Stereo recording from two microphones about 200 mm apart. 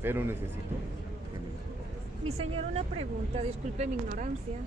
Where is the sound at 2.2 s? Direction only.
30° right (ahead or behind).